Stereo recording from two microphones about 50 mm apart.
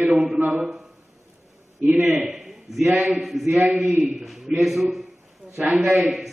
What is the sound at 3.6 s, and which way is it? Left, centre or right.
Speech, right.